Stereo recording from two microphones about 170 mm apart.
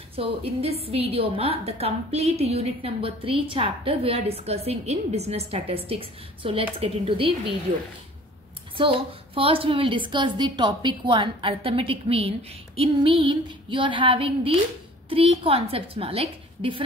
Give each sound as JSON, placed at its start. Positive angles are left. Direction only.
{"t": 0.1, "sound": "a woman's voice", "side_deg": -35}
{"t": 8.7, "sound": "a woman's voice", "side_deg": -30}